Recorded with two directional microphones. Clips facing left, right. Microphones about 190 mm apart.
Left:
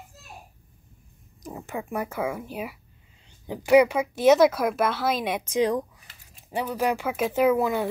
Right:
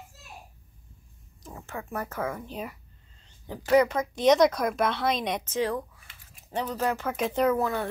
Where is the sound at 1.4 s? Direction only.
15° left (ahead or behind).